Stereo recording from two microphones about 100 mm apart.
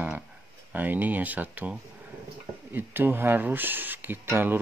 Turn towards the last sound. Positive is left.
turn(degrees=-20)  # may be behind; listen again after turning